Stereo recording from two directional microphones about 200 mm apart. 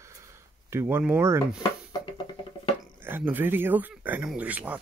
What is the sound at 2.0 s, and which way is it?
Music, 25° left (ahead or behind).